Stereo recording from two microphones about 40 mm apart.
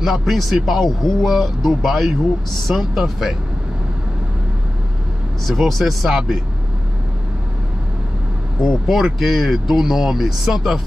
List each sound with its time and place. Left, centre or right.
0.0 s speech: centre
5.5 s speech: centre
8.8 s speech: centre